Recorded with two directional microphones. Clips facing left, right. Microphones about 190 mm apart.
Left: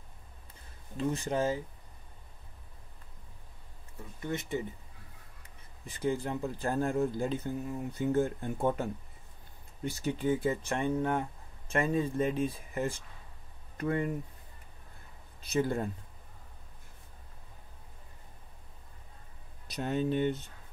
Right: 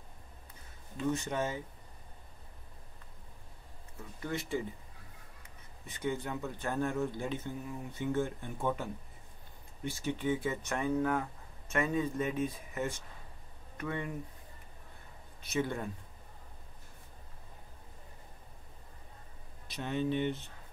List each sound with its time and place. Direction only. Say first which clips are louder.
0.9 s speech: left 2 dB; 35° left (ahead or behind)
4.2 s speech: left 1 dB; 20° left (ahead or behind)
5.9 s speech: left 4 dB; 35° left (ahead or behind)
10.0 s speech: left 3 dB; 35° left (ahead or behind)
15.5 s speech: left 4 dB; 35° left (ahead or behind)
19.7 s speech: left 2 dB; 40° left (ahead or behind)